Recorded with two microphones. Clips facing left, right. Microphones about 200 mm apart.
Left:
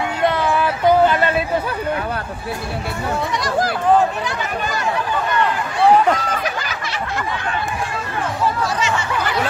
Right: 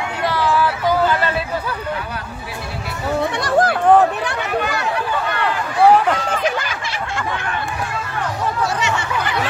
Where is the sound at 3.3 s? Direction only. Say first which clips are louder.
Right 5 dB; 60° right (ahead or behind).